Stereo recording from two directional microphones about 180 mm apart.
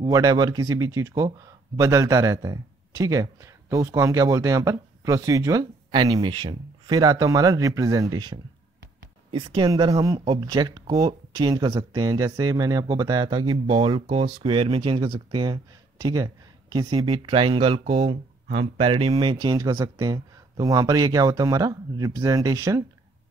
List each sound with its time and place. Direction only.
0.0 s speech: 20° right (ahead or behind)